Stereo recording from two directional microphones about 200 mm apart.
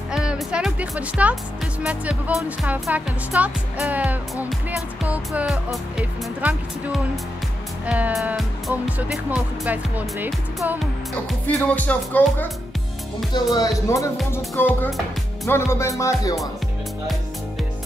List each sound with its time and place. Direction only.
0.1 s speech: 5° right (ahead or behind)
11.4 s speech: 10° left (ahead or behind)
13.3 s speech: 20° left (ahead or behind)